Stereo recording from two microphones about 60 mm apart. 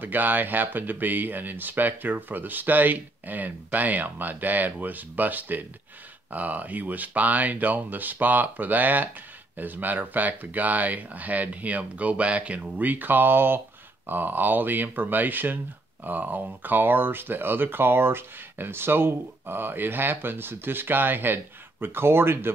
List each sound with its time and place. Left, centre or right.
0.0 s speech: right